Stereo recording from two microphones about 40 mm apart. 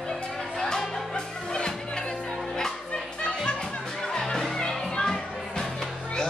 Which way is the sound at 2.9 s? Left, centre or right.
Left.